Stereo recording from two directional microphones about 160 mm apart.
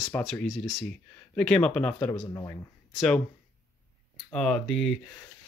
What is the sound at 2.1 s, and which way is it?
Speech, 25° left (ahead or behind).